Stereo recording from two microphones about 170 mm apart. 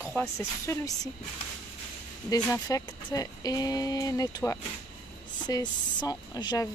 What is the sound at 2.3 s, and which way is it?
Speech, 20° left (ahead or behind).